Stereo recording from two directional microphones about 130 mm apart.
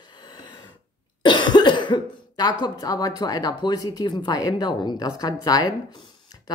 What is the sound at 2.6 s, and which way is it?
Speech, 30° left (ahead or behind).